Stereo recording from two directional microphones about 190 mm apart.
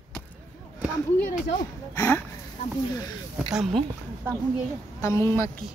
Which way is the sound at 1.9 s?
10° left (ahead or behind).